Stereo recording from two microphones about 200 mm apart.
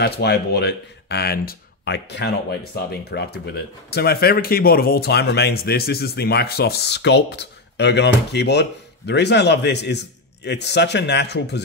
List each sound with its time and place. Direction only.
0.0 s speech: 55° left (ahead or behind)